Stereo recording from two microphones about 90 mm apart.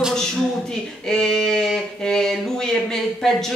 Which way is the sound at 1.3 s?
5° left (ahead or behind).